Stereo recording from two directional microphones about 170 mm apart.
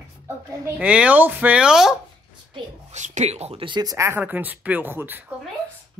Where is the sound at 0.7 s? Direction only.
5° right (ahead or behind).